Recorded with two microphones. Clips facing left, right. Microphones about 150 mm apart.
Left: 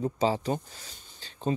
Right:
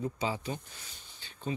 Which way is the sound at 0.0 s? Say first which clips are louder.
Left 7 dB; 35° left (ahead or behind).